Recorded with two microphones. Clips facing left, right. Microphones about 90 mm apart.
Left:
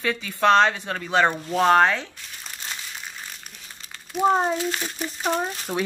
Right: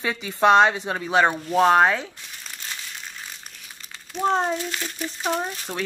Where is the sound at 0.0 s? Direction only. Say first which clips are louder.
Right 1 dB; 20° right (ahead or behind).